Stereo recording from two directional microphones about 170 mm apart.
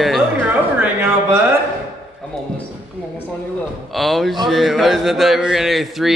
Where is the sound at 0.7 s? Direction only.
10° right (ahead or behind).